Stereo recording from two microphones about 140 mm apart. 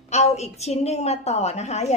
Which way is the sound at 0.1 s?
50° left (ahead or behind).